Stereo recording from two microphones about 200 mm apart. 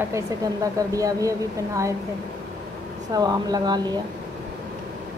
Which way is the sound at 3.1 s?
20° right (ahead or behind).